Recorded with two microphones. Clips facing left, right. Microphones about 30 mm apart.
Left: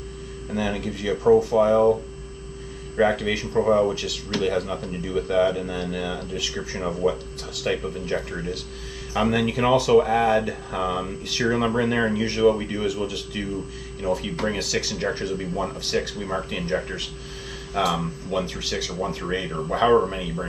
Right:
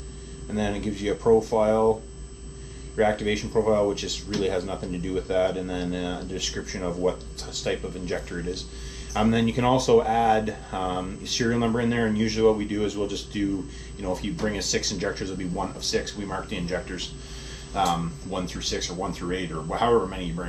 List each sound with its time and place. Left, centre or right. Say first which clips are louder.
0.5 s speech: left 1 dB; left
3.0 s speech: left 2 dB; left
12.8 s speech: left 1 dB; centre
14.6 s speech: left 2 dB; centre
15.3 s speech: left 3 dB; left
15.8 s speech: left 2 dB; centre